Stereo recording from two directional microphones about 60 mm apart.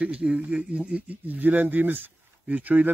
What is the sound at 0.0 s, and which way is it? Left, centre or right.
Speech, centre.